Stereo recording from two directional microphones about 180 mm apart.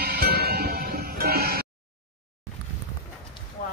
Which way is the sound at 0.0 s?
60° right (ahead or behind).